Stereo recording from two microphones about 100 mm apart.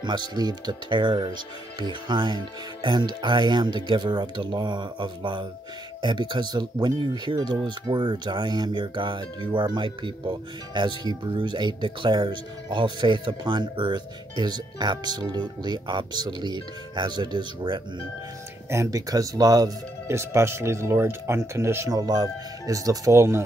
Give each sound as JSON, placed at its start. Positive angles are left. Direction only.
{"t": 0.0, "sound": "speech", "side_deg": -45}
{"t": 18.7, "sound": "speech", "side_deg": -30}
{"t": 21.9, "sound": "speech", "side_deg": -40}